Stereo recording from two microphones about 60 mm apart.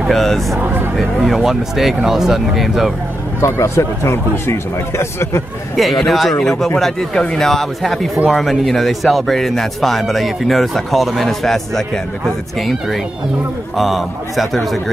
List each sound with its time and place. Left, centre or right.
0.1 s speech: centre
0.6 s speech: right
0.9 s speech: centre
3.3 s a man's voice: left
5.8 s speech: centre
6.8 s speech: centre